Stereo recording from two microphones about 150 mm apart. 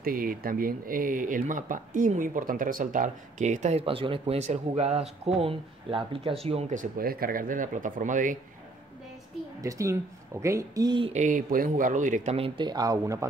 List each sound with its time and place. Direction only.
0.0 s speech: 70° right (ahead or behind); by 6.3 s 35° right (ahead or behind)
6.7 s speech: 65° right (ahead or behind)
9.6 s speech: 20° right (ahead or behind)
11.1 s speech: 60° right (ahead or behind); by 13.3 s 20° right (ahead or behind)